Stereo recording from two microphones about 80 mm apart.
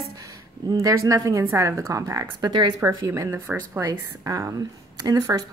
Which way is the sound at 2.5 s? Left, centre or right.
Right.